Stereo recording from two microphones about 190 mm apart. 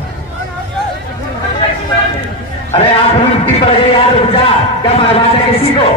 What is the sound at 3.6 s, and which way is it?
Speech, 30° left (ahead or behind).